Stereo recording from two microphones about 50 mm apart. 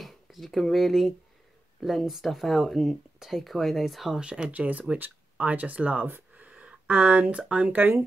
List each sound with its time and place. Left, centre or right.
0.0 s speech: centre
4.2 s speech: centre
4.5 s speech: right
6.3 s a sound: right
7.4 s speech: centre